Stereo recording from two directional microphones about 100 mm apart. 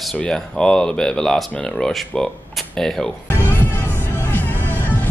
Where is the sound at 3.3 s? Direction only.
20° left (ahead or behind).